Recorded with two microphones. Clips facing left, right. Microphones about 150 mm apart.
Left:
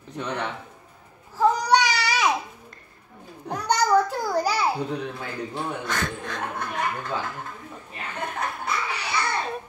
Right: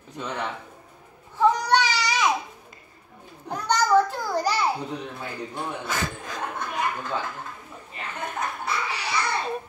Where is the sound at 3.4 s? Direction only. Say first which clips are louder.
Left 1 dB; 10° left (ahead or behind).